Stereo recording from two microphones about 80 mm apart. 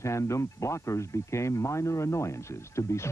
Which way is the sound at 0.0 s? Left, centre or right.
Left.